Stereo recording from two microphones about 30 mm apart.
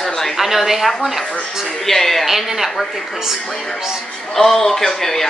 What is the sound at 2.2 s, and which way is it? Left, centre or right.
Speech, centre.